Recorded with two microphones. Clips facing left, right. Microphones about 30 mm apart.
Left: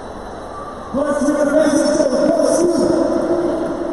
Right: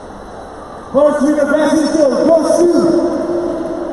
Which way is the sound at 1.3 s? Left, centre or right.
Right.